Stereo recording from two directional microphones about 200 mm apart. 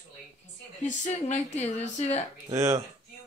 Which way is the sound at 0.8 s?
35° left (ahead or behind).